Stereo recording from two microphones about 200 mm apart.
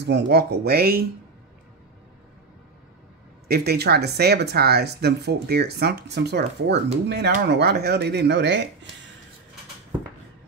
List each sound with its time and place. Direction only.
0.0 s speech: 55° right (ahead or behind)
3.4 s speech: 50° right (ahead or behind)